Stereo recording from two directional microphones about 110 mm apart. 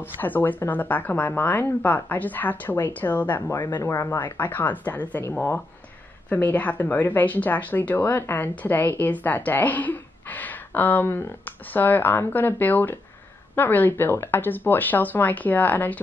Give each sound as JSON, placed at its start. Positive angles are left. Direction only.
{"t": 0.2, "sound": "speech", "side_deg": 15}
{"t": 3.6, "sound": "speech", "side_deg": 30}
{"t": 6.2, "sound": "speech", "side_deg": 15}